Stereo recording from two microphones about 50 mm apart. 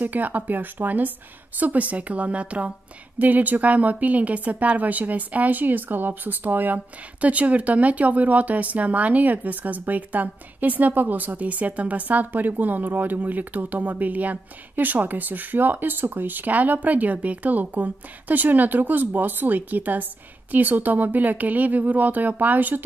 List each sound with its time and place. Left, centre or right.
0.0 s a woman's voice: right